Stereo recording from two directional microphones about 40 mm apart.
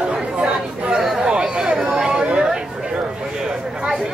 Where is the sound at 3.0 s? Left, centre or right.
Centre.